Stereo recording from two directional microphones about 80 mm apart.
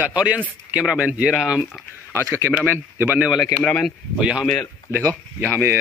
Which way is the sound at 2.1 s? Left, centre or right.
Right.